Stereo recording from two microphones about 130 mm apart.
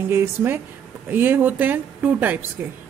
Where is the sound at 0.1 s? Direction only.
20° right (ahead or behind).